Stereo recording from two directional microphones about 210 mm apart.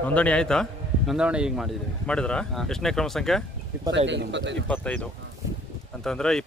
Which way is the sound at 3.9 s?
60° right (ahead or behind).